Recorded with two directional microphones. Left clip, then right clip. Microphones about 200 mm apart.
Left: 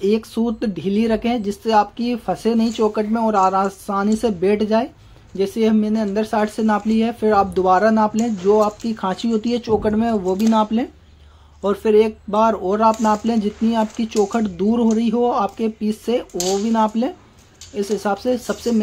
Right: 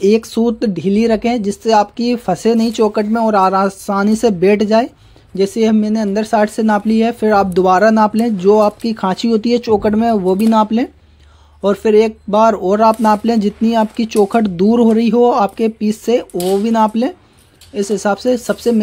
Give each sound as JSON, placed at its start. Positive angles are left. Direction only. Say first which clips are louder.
{"t": 0.0, "sound": "speech", "louder": "right 7 dB", "side_deg": -35}